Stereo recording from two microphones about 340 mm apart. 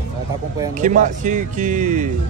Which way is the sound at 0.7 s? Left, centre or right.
Right.